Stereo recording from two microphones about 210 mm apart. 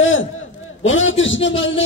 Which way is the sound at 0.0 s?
70° left (ahead or behind).